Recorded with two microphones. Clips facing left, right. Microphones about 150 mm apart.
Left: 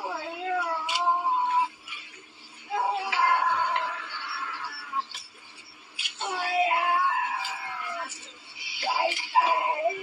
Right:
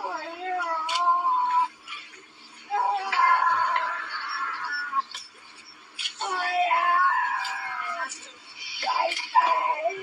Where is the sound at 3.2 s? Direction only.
40° right (ahead or behind).